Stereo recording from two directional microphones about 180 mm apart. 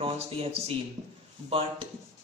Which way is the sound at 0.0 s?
30° right (ahead or behind).